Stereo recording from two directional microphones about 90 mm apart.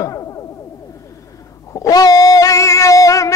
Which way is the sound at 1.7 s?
40° left (ahead or behind).